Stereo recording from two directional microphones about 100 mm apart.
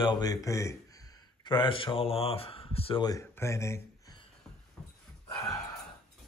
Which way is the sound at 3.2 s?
30° left (ahead or behind).